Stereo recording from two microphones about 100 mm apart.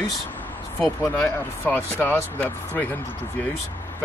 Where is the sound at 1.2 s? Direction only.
20° left (ahead or behind).